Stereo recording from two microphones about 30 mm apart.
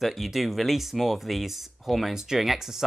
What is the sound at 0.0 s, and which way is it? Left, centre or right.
Speech, centre.